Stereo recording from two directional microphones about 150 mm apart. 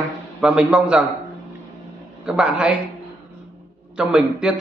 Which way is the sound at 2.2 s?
5° right (ahead or behind).